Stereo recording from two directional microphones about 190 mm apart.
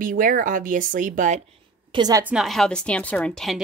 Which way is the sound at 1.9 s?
20° right (ahead or behind).